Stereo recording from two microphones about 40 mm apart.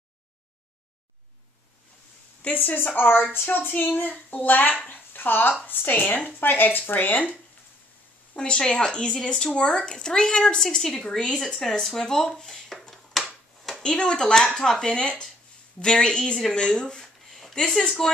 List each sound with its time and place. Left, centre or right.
2.5 s speech: left
4.8 s a sound: left
5.9 s speech: left
6.4 s speech: left
8.4 s speech: left
11.1 s speech: left
11.3 s speech: centre
12.4 s a sound: centre
13.8 s speech: centre